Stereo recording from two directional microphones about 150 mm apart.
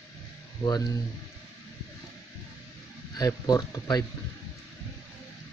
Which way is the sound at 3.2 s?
25° left (ahead or behind).